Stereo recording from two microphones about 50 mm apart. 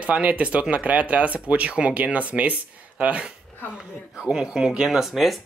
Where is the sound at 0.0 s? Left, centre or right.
Right.